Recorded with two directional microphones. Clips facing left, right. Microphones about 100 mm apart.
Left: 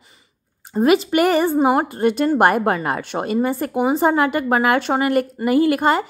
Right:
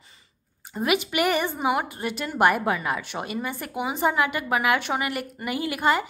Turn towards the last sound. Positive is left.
turn(degrees=40)  # may be behind; listen again after turning